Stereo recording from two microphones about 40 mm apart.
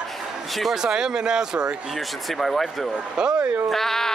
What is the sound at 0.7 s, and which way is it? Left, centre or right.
Speech, centre.